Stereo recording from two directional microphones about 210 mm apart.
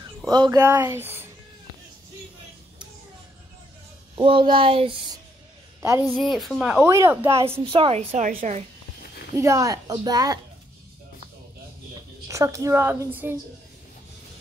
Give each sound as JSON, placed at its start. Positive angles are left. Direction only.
{"t": 0.3, "sound": "a woman's voice", "side_deg": -20}
{"t": 4.1, "sound": "speech", "side_deg": -25}
{"t": 5.8, "sound": "a woman's voice", "side_deg": -10}
{"t": 6.1, "sound": "speech", "side_deg": 0}
{"t": 7.6, "sound": "speech", "side_deg": -25}
{"t": 9.3, "sound": "a woman's voice", "side_deg": -15}
{"t": 12.3, "sound": "a woman's voice", "side_deg": -15}